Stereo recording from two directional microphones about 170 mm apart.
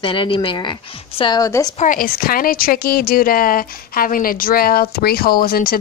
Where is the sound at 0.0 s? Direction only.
30° left (ahead or behind).